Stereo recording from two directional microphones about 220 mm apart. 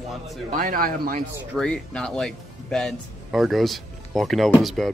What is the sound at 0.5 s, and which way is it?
Speech, 40° right (ahead or behind).